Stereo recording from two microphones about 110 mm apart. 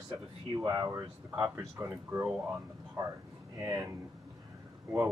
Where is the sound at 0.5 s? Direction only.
40° right (ahead or behind).